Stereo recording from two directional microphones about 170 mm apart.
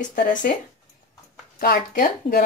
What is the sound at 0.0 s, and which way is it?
Speech, 50° left (ahead or behind).